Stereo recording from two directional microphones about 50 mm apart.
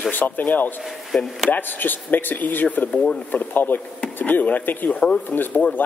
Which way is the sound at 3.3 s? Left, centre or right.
Left.